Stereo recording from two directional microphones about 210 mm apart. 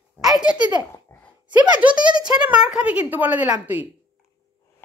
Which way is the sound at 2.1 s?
20° right (ahead or behind).